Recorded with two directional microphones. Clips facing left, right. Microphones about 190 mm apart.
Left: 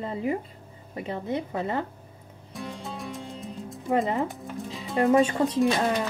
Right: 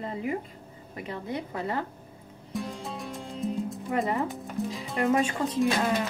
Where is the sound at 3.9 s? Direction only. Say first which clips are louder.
Left 4 dB; 20° left (ahead or behind).